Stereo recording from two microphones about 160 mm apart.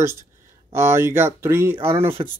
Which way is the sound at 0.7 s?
15° right (ahead or behind).